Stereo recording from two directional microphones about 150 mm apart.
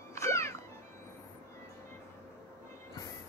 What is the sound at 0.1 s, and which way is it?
Music, 20° left (ahead or behind).